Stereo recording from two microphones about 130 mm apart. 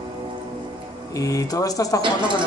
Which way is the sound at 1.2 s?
25° left (ahead or behind).